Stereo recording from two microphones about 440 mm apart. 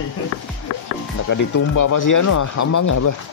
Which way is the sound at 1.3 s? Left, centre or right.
Left.